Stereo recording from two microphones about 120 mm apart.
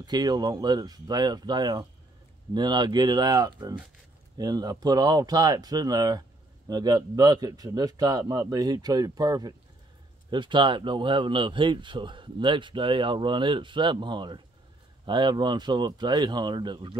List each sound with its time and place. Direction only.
0.0 s speech: 35° right (ahead or behind)